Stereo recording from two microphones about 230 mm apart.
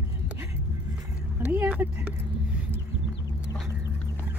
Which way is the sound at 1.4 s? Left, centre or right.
Centre.